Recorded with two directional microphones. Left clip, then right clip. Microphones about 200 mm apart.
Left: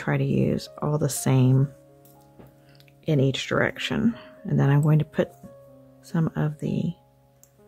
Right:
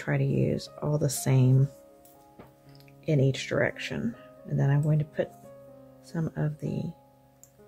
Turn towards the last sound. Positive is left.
turn(degrees=20)  # may be behind; listen again after turning